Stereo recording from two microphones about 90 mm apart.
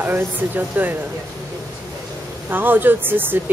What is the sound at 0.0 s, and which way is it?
Speech, 25° right (ahead or behind).